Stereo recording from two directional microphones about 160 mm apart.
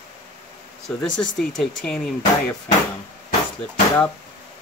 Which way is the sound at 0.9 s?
5° left (ahead or behind).